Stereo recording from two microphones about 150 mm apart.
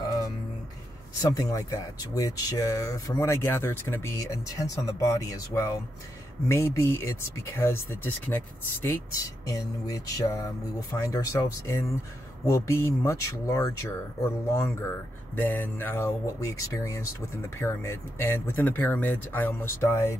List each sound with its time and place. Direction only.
0.0 s music: 25° left (ahead or behind)
1.2 s speech: 25° left (ahead or behind)